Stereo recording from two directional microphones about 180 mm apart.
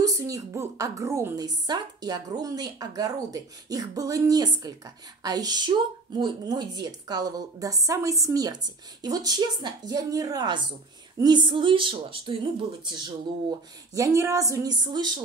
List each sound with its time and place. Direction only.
0.0 s speech: 20° right (ahead or behind)